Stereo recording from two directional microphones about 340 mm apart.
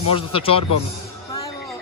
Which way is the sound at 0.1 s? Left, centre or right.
Centre.